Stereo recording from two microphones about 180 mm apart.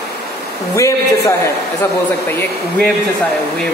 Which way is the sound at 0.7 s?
15° left (ahead or behind).